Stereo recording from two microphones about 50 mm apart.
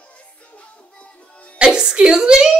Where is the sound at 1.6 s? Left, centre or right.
Centre.